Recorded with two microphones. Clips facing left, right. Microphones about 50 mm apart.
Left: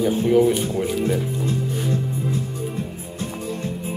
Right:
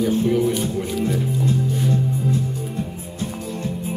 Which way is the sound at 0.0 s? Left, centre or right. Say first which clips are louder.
Left 2 dB; centre.